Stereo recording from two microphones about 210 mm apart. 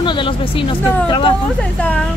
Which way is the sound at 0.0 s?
20° left (ahead or behind).